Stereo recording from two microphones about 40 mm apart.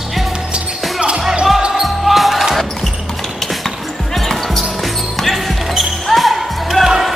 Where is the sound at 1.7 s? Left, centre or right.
Centre.